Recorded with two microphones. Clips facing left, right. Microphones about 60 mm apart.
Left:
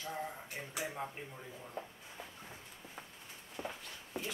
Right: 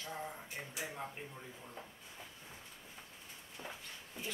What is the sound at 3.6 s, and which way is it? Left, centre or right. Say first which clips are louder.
Walk: left 1 dB; left.